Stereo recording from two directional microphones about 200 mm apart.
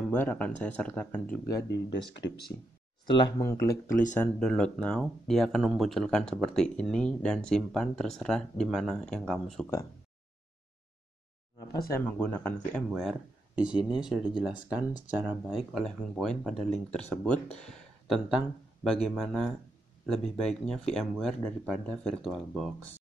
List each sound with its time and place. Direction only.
0.1 s speech: 10° left (ahead or behind)
1.7 s speech: 60° left (ahead or behind)
3.3 s speech: 15° left (ahead or behind)
11.9 s speech: 10° left (ahead or behind)